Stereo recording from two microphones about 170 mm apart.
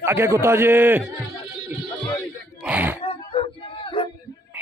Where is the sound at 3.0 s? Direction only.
30° left (ahead or behind).